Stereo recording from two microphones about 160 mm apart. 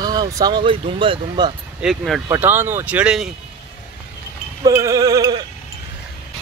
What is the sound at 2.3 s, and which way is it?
Speech, 15° right (ahead or behind).